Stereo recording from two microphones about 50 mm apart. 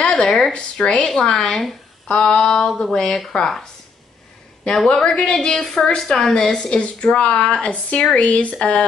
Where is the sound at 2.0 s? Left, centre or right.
Centre.